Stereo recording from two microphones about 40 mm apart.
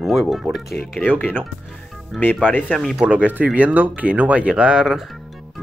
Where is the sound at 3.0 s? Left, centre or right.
Right.